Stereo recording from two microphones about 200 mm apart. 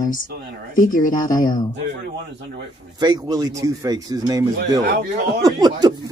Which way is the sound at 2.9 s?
20° right (ahead or behind).